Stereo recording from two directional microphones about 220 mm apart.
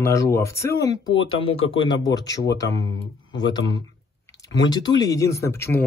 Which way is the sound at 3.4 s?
20° left (ahead or behind).